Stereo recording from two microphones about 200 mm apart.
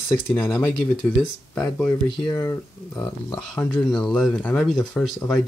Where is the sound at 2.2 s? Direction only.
15° left (ahead or behind).